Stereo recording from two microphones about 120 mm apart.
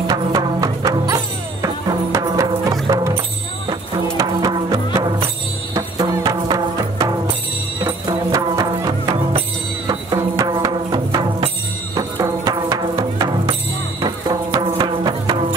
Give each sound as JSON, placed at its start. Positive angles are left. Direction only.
{"t": 0.1, "sound": "music", "side_deg": -30}
{"t": 4.2, "sound": "music", "side_deg": -30}